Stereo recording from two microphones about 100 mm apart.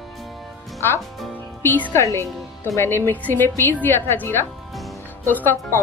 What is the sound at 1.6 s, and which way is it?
A woman's voice, 20° left (ahead or behind).